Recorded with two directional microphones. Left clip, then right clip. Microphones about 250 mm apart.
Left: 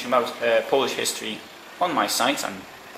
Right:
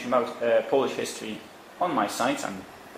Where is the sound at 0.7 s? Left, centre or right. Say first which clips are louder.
Left 2 dB; right.